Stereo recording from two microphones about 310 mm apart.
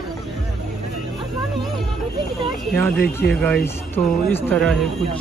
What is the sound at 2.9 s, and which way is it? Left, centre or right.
Speech, left.